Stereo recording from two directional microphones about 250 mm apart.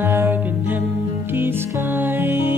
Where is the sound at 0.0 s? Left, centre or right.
Centre.